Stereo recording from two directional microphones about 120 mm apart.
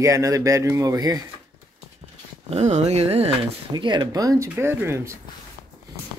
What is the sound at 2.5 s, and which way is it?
Carnatic music, 65° right (ahead or behind).